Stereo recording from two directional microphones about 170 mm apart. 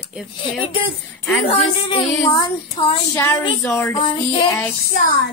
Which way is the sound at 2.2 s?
30° left (ahead or behind).